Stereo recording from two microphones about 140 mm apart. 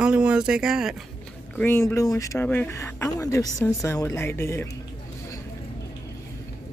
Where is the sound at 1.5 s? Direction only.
15° left (ahead or behind).